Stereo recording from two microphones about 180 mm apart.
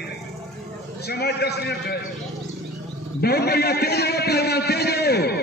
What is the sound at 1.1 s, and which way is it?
Speech, 60° left (ahead or behind).